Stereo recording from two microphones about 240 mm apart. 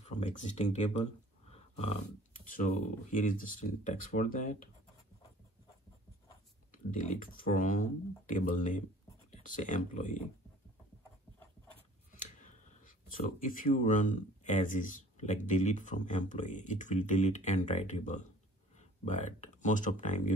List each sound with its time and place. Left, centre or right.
0.0 s speech: left
6.9 s speech: left
12.2 s speech: left